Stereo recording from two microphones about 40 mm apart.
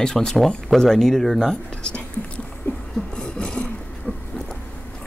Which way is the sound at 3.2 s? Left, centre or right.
Left.